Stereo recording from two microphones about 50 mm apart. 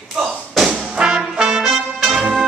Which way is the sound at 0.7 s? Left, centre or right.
Centre.